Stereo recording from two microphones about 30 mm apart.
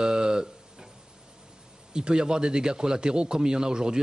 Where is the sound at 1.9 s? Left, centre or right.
Right.